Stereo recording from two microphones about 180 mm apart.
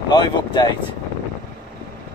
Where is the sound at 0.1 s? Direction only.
25° left (ahead or behind).